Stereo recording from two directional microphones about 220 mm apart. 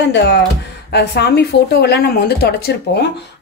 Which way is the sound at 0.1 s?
50° left (ahead or behind).